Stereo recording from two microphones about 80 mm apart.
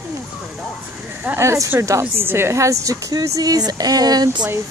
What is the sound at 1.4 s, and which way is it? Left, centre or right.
A woman's voice, right.